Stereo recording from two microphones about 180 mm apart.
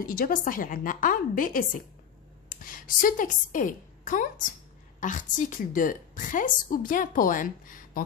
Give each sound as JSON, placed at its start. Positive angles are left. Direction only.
{"t": 0.0, "sound": "a woman's voice", "side_deg": 50}